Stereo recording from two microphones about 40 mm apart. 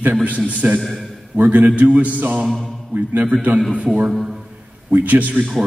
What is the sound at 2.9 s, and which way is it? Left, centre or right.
Speech, right.